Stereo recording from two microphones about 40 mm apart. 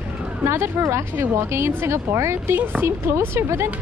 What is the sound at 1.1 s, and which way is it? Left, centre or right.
A woman's voice, right.